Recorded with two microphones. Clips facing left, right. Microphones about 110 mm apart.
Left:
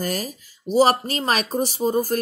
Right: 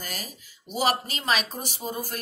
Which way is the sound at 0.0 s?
40° left (ahead or behind).